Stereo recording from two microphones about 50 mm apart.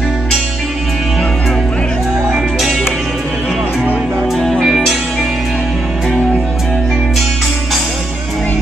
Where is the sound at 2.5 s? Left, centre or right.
Centre.